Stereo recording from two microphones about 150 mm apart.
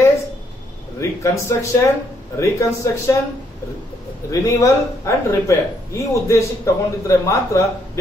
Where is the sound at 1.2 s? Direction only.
20° left (ahead or behind).